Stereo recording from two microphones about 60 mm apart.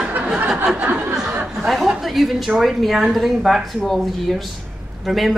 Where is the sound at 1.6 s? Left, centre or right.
Centre.